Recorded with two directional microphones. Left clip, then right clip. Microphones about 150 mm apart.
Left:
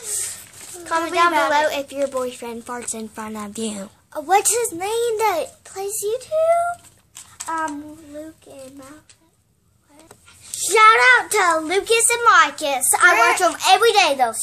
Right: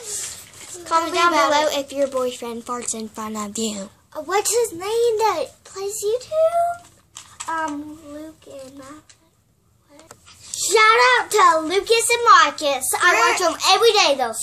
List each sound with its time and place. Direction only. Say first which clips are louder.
0.8 s a woman's voice: even; 10° right (ahead or behind)
4.1 s a child's voice: left 3 dB; 25° left (ahead or behind)
10.0 s a child's voice: right 2 dB; 5° left (ahead or behind)